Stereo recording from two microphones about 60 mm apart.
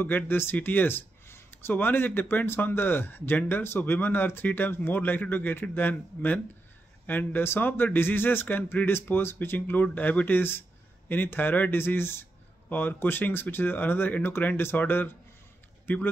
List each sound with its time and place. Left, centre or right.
0.0 s speech: left